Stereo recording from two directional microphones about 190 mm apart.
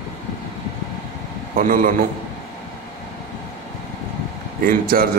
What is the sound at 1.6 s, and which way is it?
Speech, 45° right (ahead or behind).